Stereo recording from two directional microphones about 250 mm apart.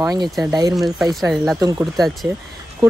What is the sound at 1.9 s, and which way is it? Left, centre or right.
Speech, centre.